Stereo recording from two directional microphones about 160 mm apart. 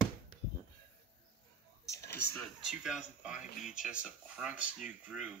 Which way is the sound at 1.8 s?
20° left (ahead or behind).